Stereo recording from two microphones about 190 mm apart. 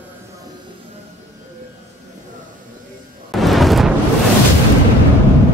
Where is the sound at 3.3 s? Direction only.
Centre (ahead or behind).